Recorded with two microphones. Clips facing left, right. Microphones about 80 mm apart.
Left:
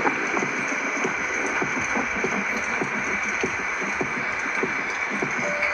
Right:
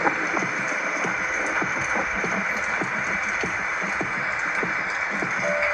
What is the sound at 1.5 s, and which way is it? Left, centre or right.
Music, centre.